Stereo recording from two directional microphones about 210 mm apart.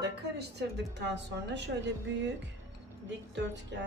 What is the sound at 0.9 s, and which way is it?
Speech, 55° right (ahead or behind).